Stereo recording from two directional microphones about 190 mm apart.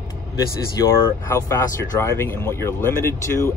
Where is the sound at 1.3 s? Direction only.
15° left (ahead or behind).